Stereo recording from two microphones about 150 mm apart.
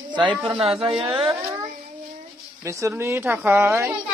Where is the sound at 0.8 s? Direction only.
40° right (ahead or behind).